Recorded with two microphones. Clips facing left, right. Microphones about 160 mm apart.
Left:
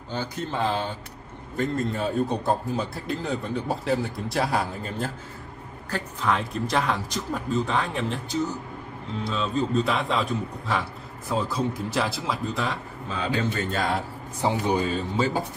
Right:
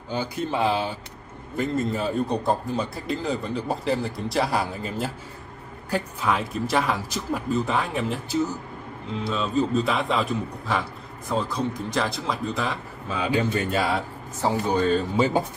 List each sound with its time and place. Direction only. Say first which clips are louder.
0.1 s a man's voice: right 3 dB; 10° right (ahead or behind)
13.2 s speech: right 3 dB; 15° right (ahead or behind)
14.4 s speech: right 1 dB; 15° left (ahead or behind)
15.1 s speech: even; 15° right (ahead or behind)